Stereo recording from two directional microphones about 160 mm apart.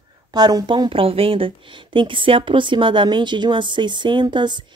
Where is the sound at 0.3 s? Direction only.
25° right (ahead or behind).